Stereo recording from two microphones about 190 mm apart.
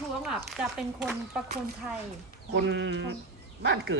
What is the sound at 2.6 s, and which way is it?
Sheep, 65° right (ahead or behind).